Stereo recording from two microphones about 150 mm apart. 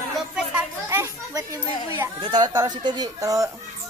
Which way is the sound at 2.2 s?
30° right (ahead or behind).